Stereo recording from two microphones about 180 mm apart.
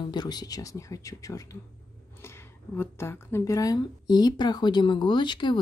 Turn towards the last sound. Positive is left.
turn(degrees=25)  # may be behind; listen again after turning